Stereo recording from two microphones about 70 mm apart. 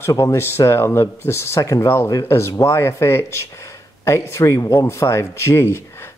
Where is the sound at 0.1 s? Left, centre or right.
Left.